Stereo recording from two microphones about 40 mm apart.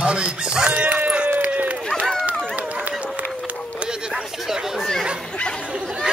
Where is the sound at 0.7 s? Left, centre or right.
Right.